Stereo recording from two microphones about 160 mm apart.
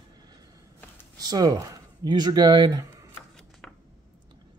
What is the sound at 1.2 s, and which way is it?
Speech, 25° right (ahead or behind).